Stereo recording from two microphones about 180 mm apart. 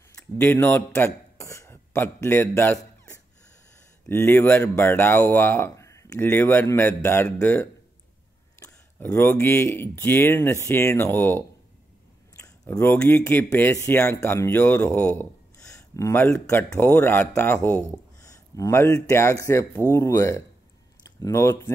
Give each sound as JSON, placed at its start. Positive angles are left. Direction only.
{"t": 0.4, "sound": "a man's voice", "side_deg": 10}